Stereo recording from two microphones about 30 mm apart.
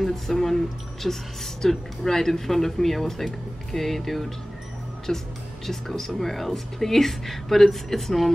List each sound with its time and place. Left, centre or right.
0.0 s speech: centre
5.1 s speech: centre